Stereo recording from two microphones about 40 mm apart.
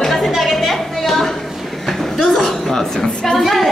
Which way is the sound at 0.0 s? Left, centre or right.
Centre.